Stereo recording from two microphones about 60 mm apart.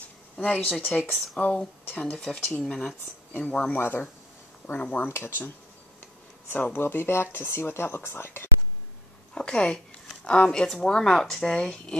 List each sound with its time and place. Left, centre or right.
0.4 s speech: left
1.4 s speech: centre
3.4 s speech: left
3.7 s speech: left
4.7 s speech: left
5.0 s speech: left
6.5 s speech: left
9.3 s a woman's voice: centre